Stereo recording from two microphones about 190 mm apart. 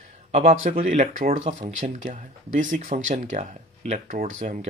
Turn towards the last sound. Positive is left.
turn(degrees=-40)  # may be behind; listen again after turning